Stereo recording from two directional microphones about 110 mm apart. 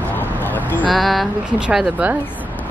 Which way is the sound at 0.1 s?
15° left (ahead or behind).